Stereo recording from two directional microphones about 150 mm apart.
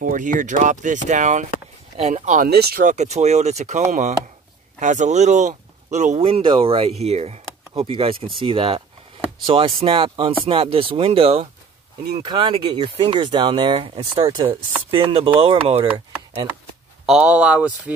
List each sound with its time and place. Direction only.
0.0 s speech: 60° right (ahead or behind)
2.4 s speech: 90° right
2.9 s speech: 50° right (ahead or behind)
12.2 s speech: 30° right (ahead or behind)
17.0 s speech: 5° right (ahead or behind)